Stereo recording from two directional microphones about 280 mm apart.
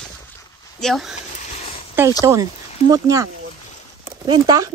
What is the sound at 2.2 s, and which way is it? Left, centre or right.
Speech, centre.